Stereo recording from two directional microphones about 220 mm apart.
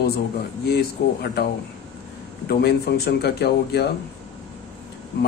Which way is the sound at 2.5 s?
45° left (ahead or behind).